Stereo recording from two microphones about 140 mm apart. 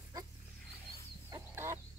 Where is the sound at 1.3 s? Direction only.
20° right (ahead or behind).